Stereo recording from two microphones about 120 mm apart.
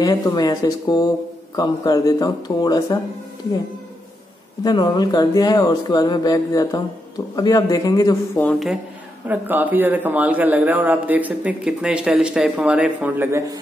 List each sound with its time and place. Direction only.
0.0 s speech: 35° left (ahead or behind)
4.6 s speech: 35° left (ahead or behind)
9.3 s a man's voice: 15° right (ahead or behind)